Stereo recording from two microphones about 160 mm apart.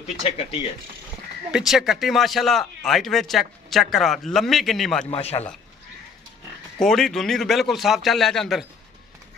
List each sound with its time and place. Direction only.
0.0 s speech: 35° left (ahead or behind)
1.5 s speech: centre (ahead or behind)
5.1 s speech: 40° left (ahead or behind)
6.8 s speech: centre (ahead or behind)